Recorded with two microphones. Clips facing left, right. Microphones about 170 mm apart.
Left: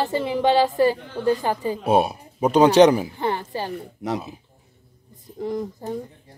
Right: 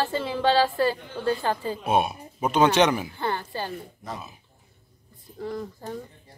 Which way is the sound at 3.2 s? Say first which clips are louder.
Left 4 dB; 15° left (ahead or behind).